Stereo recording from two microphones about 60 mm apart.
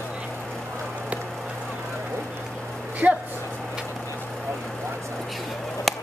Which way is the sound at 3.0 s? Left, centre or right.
Right.